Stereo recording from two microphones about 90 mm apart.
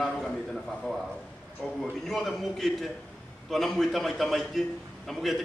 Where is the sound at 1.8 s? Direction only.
Centre (ahead or behind).